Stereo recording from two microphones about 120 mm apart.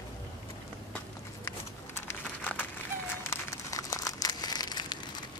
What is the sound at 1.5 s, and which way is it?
Crumpling, 20° left (ahead or behind).